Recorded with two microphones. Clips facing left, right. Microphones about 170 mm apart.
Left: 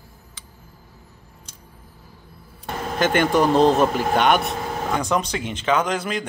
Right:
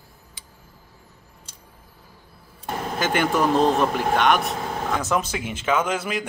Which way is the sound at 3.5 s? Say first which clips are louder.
Left 4 dB; 35° left (ahead or behind).